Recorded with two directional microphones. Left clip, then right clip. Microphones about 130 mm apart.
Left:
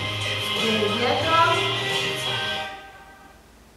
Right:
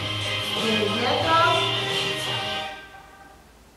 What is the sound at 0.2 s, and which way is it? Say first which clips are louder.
Music: left 2 dB; 25° left (ahead or behind).